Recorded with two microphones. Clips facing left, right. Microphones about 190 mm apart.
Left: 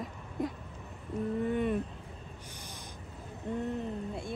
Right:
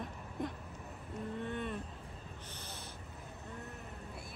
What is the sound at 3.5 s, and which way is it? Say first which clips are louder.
Speech: left 15 dB; 20° left (ahead or behind).